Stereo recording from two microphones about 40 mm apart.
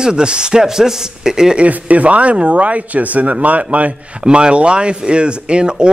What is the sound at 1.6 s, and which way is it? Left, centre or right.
Speech, right.